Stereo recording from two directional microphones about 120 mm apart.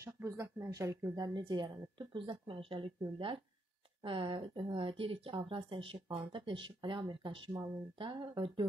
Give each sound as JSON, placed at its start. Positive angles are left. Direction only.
{"t": 0.0, "sound": "speech", "side_deg": -25}
{"t": 1.2, "sound": "a woman's voice", "side_deg": -40}